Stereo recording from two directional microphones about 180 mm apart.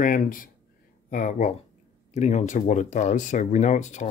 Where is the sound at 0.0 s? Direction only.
50° left (ahead or behind).